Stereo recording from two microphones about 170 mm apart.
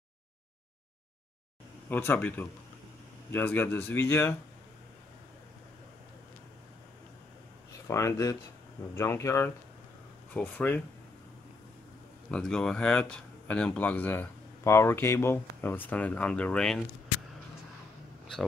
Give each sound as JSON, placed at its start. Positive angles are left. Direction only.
{"t": 1.9, "sound": "speech", "side_deg": 10}
{"t": 7.9, "sound": "speech", "side_deg": 20}
{"t": 12.3, "sound": "speech", "side_deg": 5}